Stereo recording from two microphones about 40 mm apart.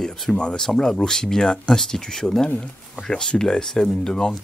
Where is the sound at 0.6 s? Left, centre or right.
Centre.